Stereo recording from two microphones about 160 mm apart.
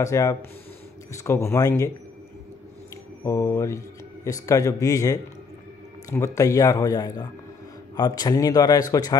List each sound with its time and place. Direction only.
0.0 s speech: 20° left (ahead or behind)
3.3 s speech: 20° left (ahead or behind)